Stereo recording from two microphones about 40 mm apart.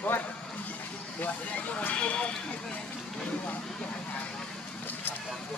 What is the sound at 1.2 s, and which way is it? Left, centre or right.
Speech, left.